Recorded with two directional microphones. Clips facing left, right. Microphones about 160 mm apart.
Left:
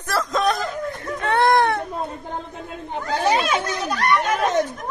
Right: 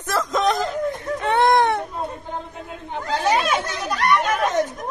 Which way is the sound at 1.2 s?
20° right (ahead or behind).